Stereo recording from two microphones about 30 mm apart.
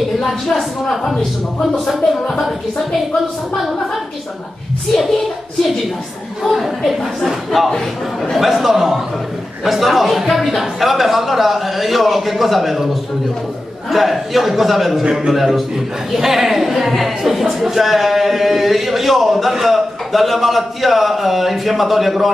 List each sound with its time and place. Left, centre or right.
0.2 s speech: centre
2.0 s speech: centre
6.4 s a man's voice: centre
13.8 s a man's voice: centre